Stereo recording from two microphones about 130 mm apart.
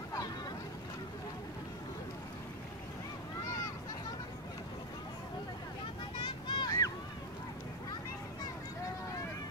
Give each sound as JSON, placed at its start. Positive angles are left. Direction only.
{"t": 6.2, "sound": "vehicle", "side_deg": 35}